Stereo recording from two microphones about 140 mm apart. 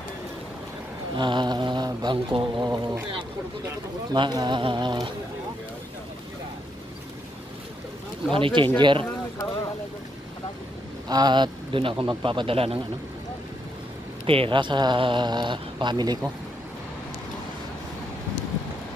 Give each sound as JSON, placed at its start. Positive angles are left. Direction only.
{"t": 1.1, "sound": "speech", "side_deg": -35}
{"t": 4.1, "sound": "speech", "side_deg": -30}
{"t": 8.3, "sound": "speech", "side_deg": -35}
{"t": 11.1, "sound": "speech", "side_deg": -30}
{"t": 14.2, "sound": "speech", "side_deg": -40}